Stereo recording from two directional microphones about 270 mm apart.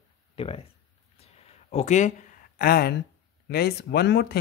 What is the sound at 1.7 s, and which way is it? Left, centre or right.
Speech, left.